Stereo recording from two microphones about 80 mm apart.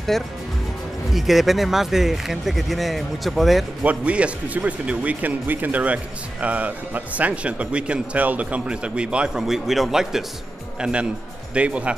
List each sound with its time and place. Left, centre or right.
0.1 s speech: centre
3.8 s speech: centre